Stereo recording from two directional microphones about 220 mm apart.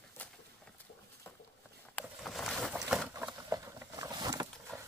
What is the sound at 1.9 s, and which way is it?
Boat, centre (ahead or behind).